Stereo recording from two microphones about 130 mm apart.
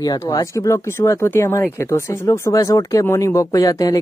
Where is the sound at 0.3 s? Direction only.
25° left (ahead or behind).